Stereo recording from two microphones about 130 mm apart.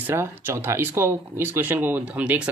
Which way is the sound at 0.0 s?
15° right (ahead or behind).